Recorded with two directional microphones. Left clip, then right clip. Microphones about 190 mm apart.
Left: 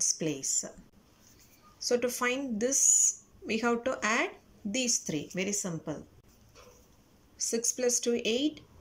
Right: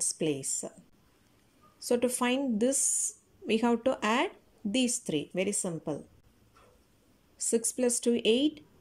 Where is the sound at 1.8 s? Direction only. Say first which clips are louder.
Even; 20° right (ahead or behind).